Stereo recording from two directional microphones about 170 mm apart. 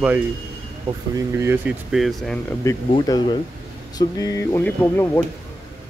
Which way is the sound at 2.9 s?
25° left (ahead or behind).